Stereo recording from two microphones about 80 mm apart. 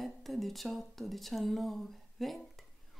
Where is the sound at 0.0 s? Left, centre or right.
Centre.